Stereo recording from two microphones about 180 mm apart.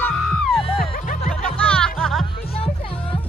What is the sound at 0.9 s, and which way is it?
Music, 50° left (ahead or behind).